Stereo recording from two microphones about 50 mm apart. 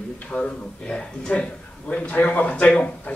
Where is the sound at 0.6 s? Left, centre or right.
Centre.